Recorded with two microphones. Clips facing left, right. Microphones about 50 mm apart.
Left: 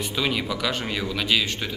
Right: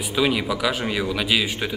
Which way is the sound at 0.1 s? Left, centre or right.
Centre.